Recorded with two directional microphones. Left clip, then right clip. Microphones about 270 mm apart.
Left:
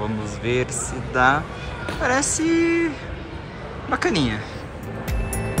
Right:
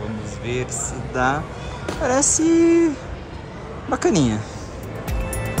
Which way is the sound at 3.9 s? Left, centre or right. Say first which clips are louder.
Right 2 dB; centre.